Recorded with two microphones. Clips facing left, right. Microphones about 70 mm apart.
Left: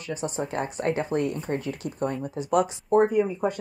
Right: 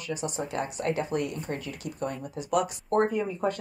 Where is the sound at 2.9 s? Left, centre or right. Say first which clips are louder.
Left 5 dB; centre.